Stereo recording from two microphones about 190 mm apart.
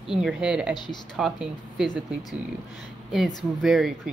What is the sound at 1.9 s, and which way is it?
Speech, 20° left (ahead or behind).